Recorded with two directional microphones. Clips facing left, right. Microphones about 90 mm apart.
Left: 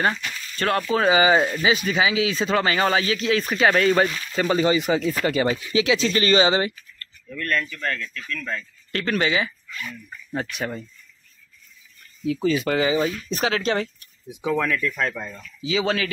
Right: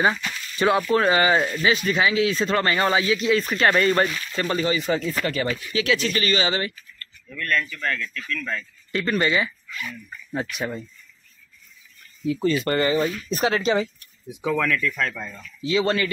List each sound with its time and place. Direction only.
0.0 s speech: 10° right (ahead or behind)
0.8 s speech: 5° left (ahead or behind); by 8.6 s 20° left (ahead or behind)
8.9 s speech: centre (ahead or behind)
12.3 s speech: centre (ahead or behind)
13.9 s a sound: 5° left (ahead or behind)
14.6 s speech: 20° left (ahead or behind)
15.1 s speech: 15° left (ahead or behind)
15.6 s speech: centre (ahead or behind)